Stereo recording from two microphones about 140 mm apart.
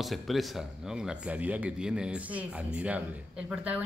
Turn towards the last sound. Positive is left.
turn(degrees=-10)  # may be behind; listen again after turning